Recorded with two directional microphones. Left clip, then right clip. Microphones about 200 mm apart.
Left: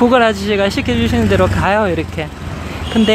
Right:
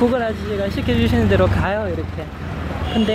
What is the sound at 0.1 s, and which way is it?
Speech, 25° left (ahead or behind).